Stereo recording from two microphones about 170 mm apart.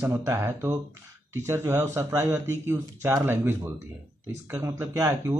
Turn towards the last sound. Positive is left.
turn(degrees=-15)  # may be behind; listen again after turning